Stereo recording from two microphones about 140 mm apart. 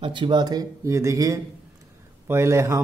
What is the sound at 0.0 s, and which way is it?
Speech, 35° right (ahead or behind).